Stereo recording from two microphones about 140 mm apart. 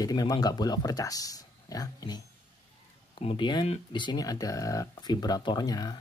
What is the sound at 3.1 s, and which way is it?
Speech, 40° left (ahead or behind).